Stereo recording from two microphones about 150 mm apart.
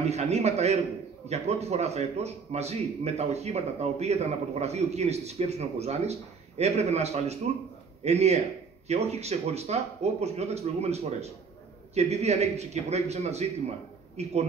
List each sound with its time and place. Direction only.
0.1 s a man's voice: 45° right (ahead or behind)